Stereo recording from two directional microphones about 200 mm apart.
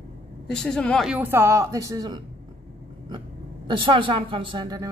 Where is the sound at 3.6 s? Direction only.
25° right (ahead or behind).